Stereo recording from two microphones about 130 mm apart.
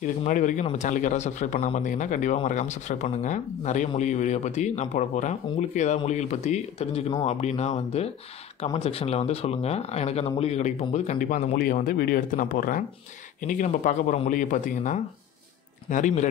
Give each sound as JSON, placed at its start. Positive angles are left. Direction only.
{"t": 0.3, "sound": "speech", "side_deg": 75}
{"t": 0.7, "sound": "speech", "side_deg": 65}
{"t": 2.4, "sound": "speech", "side_deg": 65}
{"t": 14.3, "sound": "speech", "side_deg": 80}